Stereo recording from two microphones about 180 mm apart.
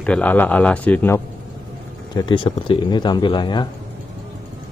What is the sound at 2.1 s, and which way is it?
Speech, 25° left (ahead or behind).